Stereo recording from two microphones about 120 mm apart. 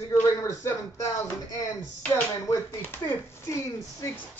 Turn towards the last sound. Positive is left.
turn(degrees=25)  # may be behind; listen again after turning